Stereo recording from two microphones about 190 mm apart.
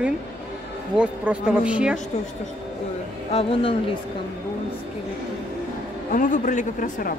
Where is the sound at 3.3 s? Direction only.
30° left (ahead or behind).